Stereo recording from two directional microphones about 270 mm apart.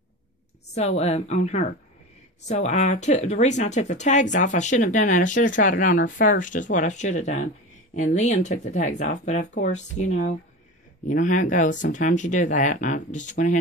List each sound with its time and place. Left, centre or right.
0.7 s speech: left